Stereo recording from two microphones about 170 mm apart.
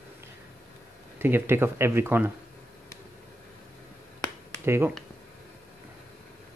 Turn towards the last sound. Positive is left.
turn(degrees=-15)  # may be behind; listen again after turning